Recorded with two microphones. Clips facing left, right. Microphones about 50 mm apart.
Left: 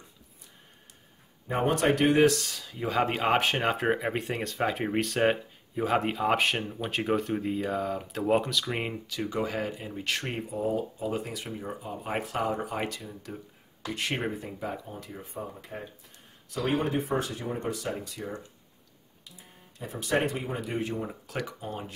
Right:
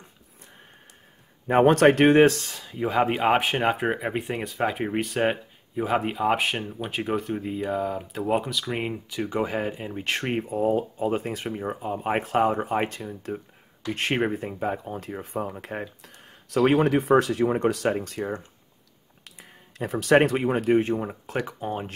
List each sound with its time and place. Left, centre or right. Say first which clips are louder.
1.5 s speech: right 8 dB; right; by 9.0 s centre
9.1 s speech: right 4 dB; right
17.8 s speech: right 9 dB; right
19.2 s a sound: right 4 dB; right
20.3 s speech: right 11 dB; right
20.7 s speech: right 10 dB; right
21.0 s speech: right 5 dB; right